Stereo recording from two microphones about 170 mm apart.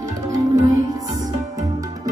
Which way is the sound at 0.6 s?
20° right (ahead or behind).